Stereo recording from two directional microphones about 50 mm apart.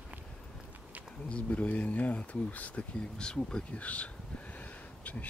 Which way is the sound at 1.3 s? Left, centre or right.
Left.